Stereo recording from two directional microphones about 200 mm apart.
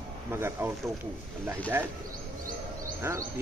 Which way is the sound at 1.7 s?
15° right (ahead or behind).